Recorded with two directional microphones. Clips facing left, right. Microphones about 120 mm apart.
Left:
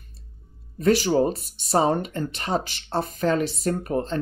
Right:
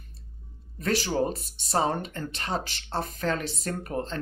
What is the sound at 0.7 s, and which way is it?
Speech, 15° left (ahead or behind).